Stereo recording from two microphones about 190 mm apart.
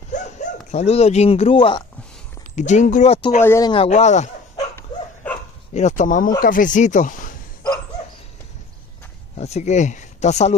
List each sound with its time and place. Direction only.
0.1 s speech: 40° left (ahead or behind)
2.5 s speech: 40° left (ahead or behind)
3.4 s speech: 15° left (ahead or behind)
3.7 s speech: 35° left (ahead or behind)
4.6 s dog: 10° left (ahead or behind)
5.7 s speech: 40° left (ahead or behind)
9.4 s speech: 35° left (ahead or behind)